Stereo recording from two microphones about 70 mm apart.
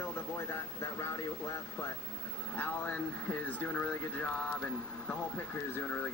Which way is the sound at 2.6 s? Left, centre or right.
Left.